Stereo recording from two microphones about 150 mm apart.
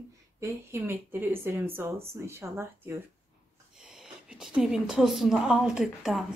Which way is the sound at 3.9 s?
5° right (ahead or behind).